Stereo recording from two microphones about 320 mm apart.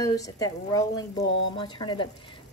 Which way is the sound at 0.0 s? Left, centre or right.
Centre.